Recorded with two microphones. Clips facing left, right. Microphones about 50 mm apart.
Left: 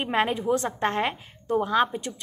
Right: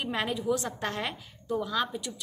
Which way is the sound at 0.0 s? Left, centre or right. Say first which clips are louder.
Left 6 dB; left.